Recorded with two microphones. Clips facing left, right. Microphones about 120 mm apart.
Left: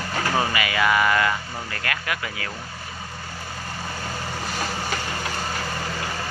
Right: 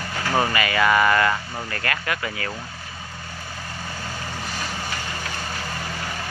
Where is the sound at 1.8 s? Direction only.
10° left (ahead or behind).